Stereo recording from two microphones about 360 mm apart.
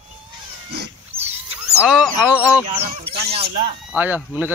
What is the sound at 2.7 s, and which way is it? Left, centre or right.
Speech, centre.